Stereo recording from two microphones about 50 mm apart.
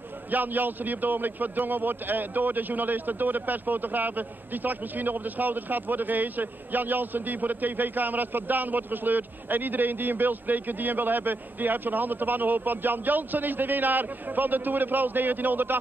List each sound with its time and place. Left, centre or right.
0.3 s a man's voice: right